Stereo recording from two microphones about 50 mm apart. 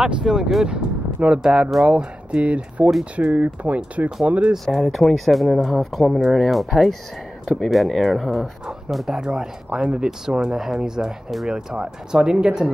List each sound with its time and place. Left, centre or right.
0.2 s speech: centre
0.7 s speech: centre
4.7 s speech: centre